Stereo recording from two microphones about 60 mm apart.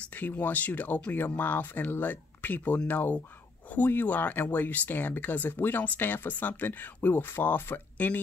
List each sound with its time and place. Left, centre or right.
0.0 s speech: left